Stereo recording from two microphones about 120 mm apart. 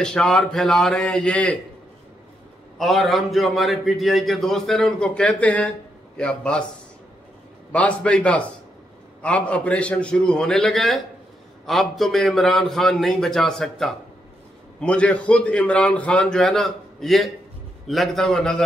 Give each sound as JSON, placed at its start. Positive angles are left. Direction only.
{"t": 0.0, "sound": "a man's voice", "side_deg": 5}
{"t": 2.8, "sound": "a man's voice", "side_deg": 0}
{"t": 7.7, "sound": "a man's voice", "side_deg": 10}